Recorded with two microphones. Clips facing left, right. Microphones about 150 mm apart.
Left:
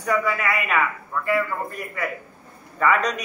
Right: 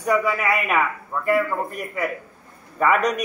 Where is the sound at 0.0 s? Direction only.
20° right (ahead or behind).